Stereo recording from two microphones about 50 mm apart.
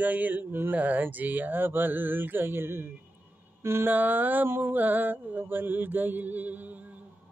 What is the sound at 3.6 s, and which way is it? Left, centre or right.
Speech, right.